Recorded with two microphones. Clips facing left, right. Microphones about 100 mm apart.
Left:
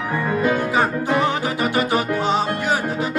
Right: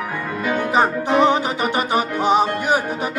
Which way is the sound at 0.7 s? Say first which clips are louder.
Right 2 dB; 20° right (ahead or behind).